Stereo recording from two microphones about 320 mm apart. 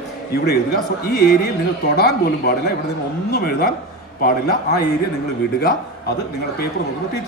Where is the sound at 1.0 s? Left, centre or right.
Left.